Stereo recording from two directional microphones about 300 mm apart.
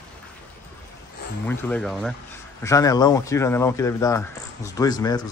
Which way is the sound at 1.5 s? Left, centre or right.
Centre.